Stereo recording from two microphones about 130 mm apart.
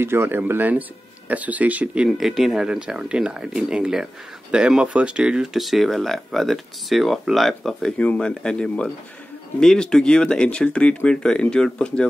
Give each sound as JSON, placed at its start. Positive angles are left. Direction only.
{"t": 0.0, "sound": "speech", "side_deg": -20}